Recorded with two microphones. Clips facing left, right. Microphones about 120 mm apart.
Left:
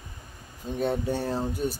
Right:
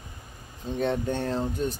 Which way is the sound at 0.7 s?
5° left (ahead or behind).